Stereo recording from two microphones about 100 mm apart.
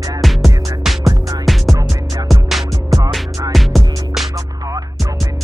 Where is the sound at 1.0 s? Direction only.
35° right (ahead or behind).